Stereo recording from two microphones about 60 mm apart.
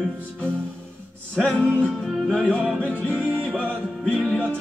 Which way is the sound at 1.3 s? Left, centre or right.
Centre.